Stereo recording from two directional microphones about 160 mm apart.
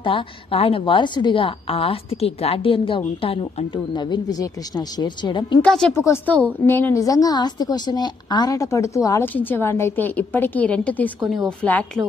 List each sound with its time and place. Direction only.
0.0 s a woman's voice: 35° left (ahead or behind)
5.6 s a woman's voice: 5° left (ahead or behind)